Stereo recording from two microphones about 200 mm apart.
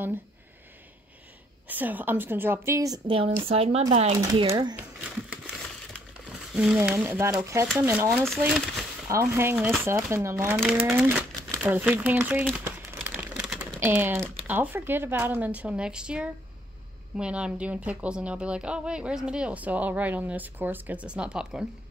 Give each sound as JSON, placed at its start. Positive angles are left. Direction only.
{"t": 1.7, "sound": "speech", "side_deg": -10}
{"t": 3.1, "sound": "speech", "side_deg": -25}
{"t": 4.2, "sound": "speech", "side_deg": -20}
{"t": 6.5, "sound": "speech", "side_deg": -5}
{"t": 8.1, "sound": "speech", "side_deg": 0}
{"t": 9.1, "sound": "speech", "side_deg": -15}
{"t": 12.4, "sound": "a sound", "side_deg": -10}
{"t": 13.7, "sound": "speech", "side_deg": -10}